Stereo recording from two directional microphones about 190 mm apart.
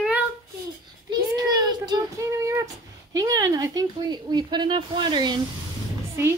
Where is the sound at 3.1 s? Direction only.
20° right (ahead or behind).